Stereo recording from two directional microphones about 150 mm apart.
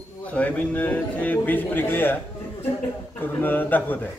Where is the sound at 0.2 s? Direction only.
10° left (ahead or behind).